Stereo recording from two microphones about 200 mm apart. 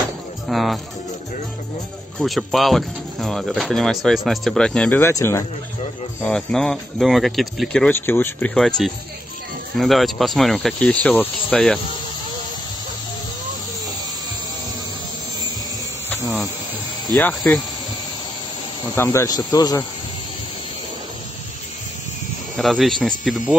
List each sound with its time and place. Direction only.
0.5 s speech: centre (ahead or behind)
2.1 s speech: centre (ahead or behind)
6.2 s speech: 5° left (ahead or behind)
16.1 s insect: centre (ahead or behind)
17.3 s speech: centre (ahead or behind)
18.9 s speech: 15° left (ahead or behind)
22.6 s speech: centre (ahead or behind)